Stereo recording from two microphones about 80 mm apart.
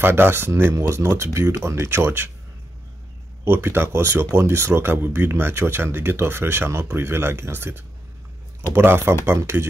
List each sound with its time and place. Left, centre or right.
0.0 s speech: right
3.4 s speech: right